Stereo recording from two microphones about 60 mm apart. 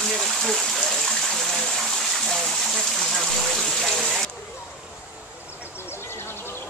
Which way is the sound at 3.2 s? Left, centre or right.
Centre.